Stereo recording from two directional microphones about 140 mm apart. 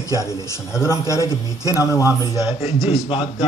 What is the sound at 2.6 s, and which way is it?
Speech, 45° left (ahead or behind).